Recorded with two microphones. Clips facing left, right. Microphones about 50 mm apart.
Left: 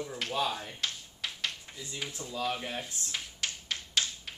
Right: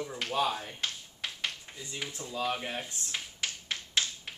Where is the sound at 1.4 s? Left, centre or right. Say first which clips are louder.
Even; centre.